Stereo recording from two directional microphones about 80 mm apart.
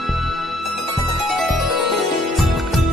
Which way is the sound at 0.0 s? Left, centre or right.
Centre.